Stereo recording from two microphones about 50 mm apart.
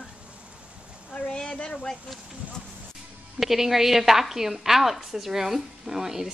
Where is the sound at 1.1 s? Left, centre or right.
Centre.